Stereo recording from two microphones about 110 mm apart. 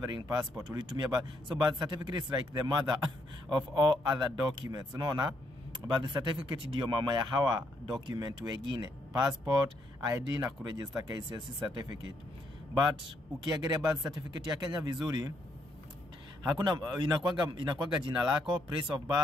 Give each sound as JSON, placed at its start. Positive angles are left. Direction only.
{"t": 0.0, "sound": "a man's voice", "side_deg": -40}
{"t": 9.9, "sound": "speech", "side_deg": -25}
{"t": 11.1, "sound": "a man's voice", "side_deg": -40}
{"t": 13.4, "sound": "a man's voice", "side_deg": -40}
{"t": 16.4, "sound": "speech", "side_deg": -40}